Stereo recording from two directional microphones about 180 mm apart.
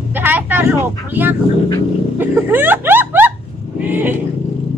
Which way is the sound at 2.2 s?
10° right (ahead or behind).